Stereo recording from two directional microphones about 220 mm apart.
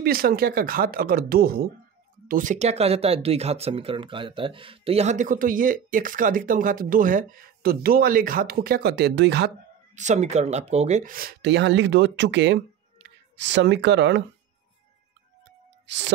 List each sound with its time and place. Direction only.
0.0 s speech: 45° right (ahead or behind)
9.9 s speech: 35° right (ahead or behind); by 14.2 s 55° right (ahead or behind)
15.9 s speech: 55° right (ahead or behind)